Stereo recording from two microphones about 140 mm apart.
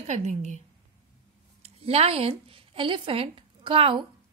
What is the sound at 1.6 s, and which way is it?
Speech, 45° right (ahead or behind).